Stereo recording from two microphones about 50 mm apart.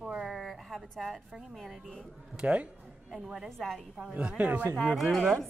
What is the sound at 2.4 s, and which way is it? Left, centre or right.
A woman's voice, centre.